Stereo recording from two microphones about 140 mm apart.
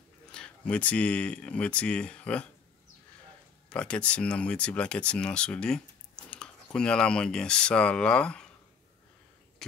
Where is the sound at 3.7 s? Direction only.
10° left (ahead or behind).